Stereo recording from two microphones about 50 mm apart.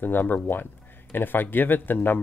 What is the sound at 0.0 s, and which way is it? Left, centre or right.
Speech, left.